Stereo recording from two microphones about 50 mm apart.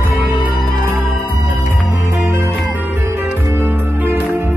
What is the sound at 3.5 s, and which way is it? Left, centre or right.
Music, right.